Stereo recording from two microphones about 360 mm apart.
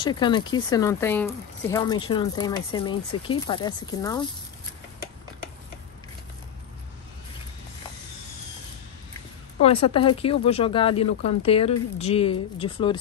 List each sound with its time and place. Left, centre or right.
0.0 s speech: centre
9.6 s speech: centre